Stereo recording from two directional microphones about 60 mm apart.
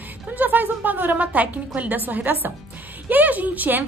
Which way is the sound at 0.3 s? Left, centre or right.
Right.